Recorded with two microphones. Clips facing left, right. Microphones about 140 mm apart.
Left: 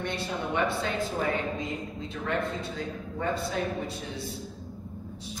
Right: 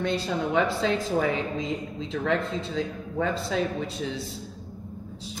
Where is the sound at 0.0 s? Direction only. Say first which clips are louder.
Right 5 dB; 90° right.